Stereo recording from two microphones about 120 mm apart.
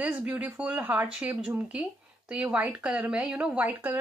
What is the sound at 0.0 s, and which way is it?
Speech, 15° right (ahead or behind).